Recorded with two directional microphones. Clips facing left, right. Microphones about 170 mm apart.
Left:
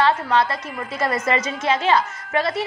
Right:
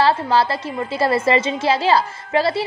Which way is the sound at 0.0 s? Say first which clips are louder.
Right 2 dB; 30° right (ahead or behind).